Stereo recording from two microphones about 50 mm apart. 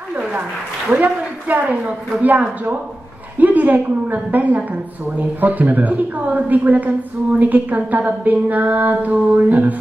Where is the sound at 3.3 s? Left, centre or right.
Right.